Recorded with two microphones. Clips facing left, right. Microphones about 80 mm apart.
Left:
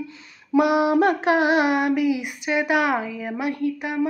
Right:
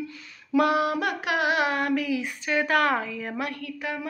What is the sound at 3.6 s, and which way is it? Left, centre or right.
Speech, centre.